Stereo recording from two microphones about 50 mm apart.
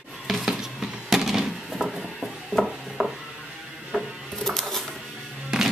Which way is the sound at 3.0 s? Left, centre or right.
Right.